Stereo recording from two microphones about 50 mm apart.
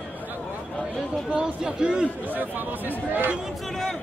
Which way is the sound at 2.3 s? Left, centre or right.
Right.